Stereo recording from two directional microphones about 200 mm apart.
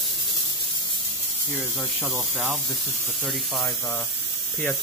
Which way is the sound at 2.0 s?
5° right (ahead or behind).